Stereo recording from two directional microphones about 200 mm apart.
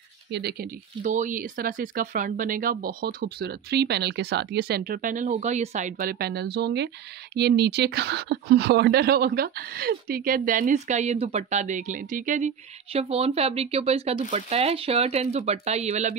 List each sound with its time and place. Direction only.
0.3 s speech: 55° right (ahead or behind)
1.0 s speech: 40° right (ahead or behind)